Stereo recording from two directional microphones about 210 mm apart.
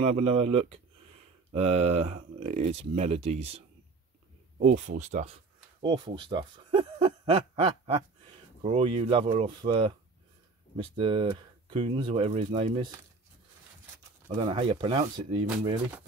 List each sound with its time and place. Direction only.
0.1 s speech: 30° right (ahead or behind)
4.6 s speech: 35° right (ahead or behind)
11.0 s speech: 25° right (ahead or behind)
14.3 s speech: 25° right (ahead or behind)